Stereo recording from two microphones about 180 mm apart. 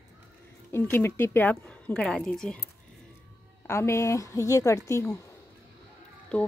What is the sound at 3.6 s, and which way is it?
A woman's voice, 15° left (ahead or behind).